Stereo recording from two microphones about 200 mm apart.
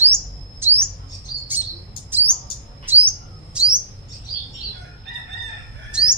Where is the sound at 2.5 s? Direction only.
50° left (ahead or behind).